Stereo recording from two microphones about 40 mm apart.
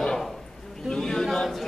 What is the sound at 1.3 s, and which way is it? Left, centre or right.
A capella, centre.